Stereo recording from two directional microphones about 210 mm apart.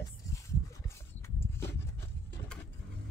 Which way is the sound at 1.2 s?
10° left (ahead or behind).